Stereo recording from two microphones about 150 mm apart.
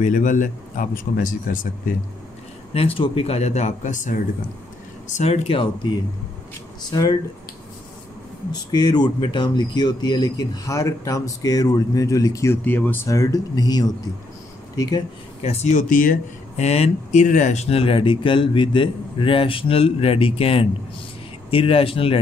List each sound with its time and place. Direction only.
0.0 s speech: 60° left (ahead or behind)
2.7 s speech: 40° left (ahead or behind)
6.9 s speech: 25° left (ahead or behind)
8.5 s speech: 25° left (ahead or behind)
15.4 s speech: 45° left (ahead or behind); by 16.6 s 60° left (ahead or behind)
16.6 s speech: 45° left (ahead or behind)